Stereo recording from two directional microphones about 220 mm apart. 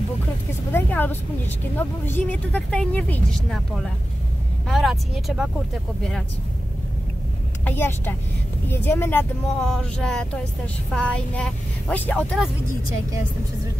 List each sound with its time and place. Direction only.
0.7 s a woman's voice: 10° left (ahead or behind)
7.6 s a woman's voice: 10° left (ahead or behind)